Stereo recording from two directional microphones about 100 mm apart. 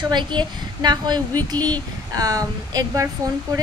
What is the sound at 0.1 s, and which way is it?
A woman's voice, 50° right (ahead or behind).